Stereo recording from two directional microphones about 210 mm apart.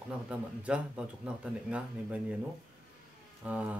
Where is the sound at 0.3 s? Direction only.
5° right (ahead or behind).